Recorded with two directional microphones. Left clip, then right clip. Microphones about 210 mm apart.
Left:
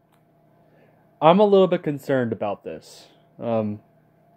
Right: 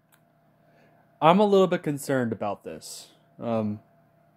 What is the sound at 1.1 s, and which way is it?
Speech, 20° right (ahead or behind).